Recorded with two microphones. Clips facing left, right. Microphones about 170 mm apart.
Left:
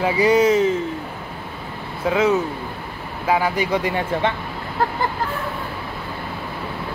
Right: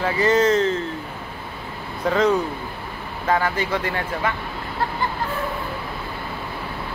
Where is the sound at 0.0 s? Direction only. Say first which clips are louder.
Left 2 dB; 10° left (ahead or behind).